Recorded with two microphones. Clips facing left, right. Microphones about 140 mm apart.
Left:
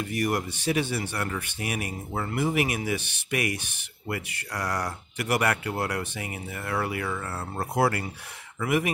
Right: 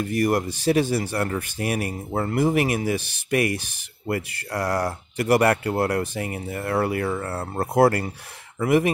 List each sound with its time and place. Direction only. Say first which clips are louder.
0.0 s speech: right 5 dB; 35° right (ahead or behind)
8.5 s speech: right 6 dB; 30° right (ahead or behind)